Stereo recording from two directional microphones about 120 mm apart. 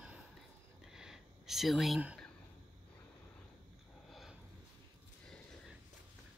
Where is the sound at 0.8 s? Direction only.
5° right (ahead or behind).